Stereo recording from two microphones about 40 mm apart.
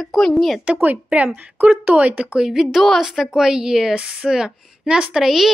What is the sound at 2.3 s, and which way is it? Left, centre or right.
A woman's voice, centre.